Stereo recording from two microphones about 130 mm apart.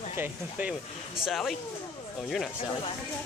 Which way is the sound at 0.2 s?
10° right (ahead or behind).